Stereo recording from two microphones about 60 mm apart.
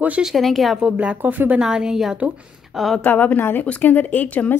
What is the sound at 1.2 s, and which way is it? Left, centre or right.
Speech, right.